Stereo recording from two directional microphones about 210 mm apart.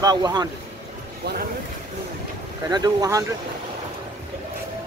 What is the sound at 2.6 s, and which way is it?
Speech, 20° right (ahead or behind).